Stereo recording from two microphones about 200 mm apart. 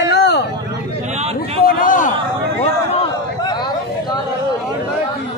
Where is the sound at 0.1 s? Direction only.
55° left (ahead or behind).